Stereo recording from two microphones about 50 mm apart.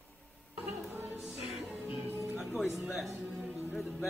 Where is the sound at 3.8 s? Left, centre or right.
Centre.